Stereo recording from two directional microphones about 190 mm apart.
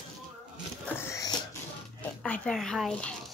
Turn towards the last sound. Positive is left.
turn(degrees=0)  # may be behind; listen again after turning